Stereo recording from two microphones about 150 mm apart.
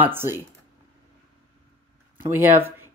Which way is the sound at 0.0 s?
15° right (ahead or behind).